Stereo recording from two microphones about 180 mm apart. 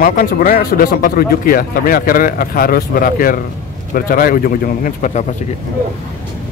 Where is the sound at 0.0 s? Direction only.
50° left (ahead or behind).